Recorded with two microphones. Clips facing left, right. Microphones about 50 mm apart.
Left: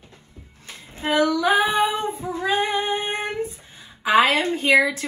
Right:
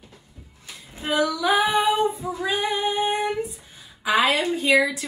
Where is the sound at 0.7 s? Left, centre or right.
Left.